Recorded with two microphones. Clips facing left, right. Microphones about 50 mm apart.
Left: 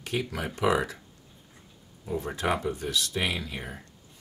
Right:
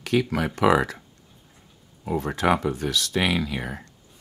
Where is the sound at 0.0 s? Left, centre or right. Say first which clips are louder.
Right 8 dB; right.